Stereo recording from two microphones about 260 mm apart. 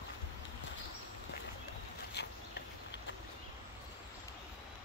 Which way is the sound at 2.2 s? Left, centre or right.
Left.